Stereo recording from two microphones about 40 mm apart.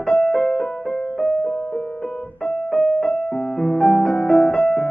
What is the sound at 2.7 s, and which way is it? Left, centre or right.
Music, centre.